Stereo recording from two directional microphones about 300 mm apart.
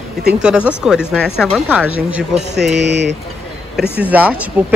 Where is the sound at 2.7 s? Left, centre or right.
Right.